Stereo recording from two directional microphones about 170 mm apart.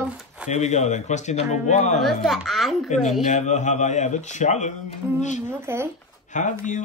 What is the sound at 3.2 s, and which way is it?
Speech, 45° left (ahead or behind).